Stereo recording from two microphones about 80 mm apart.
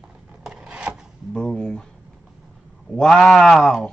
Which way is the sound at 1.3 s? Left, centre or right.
Centre.